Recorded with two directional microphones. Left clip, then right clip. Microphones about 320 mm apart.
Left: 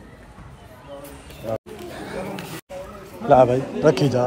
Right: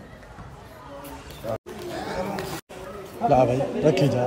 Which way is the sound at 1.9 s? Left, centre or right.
Centre.